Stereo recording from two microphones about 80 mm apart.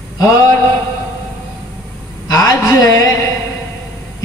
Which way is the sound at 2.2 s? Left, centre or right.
Left.